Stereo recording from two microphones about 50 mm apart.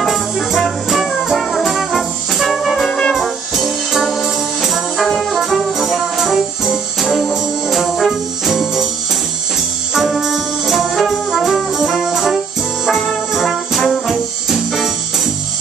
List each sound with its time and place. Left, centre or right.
0.1 s music: centre
2.9 s brass instrument: centre
3.2 s music: centre
9.9 s music: centre
11.5 s brass instrument: centre